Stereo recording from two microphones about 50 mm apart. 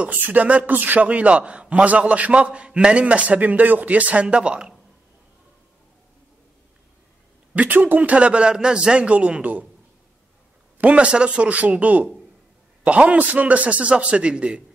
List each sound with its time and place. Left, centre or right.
0.2 s a sound: right
1.0 s a man's voice: right
7.5 s a man's voice: right
10.8 s a man's voice: right